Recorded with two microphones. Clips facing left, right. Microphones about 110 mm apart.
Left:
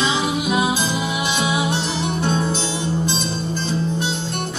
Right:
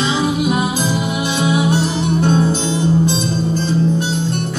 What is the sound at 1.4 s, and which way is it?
Music, 45° right (ahead or behind).